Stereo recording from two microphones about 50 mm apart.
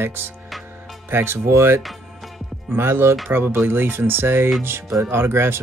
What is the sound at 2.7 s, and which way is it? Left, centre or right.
Speech, right.